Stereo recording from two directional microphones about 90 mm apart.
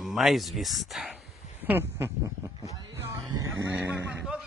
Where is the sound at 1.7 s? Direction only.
25° right (ahead or behind).